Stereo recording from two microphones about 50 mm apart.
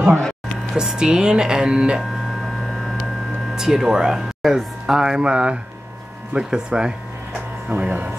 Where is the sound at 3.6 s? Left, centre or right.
Centre.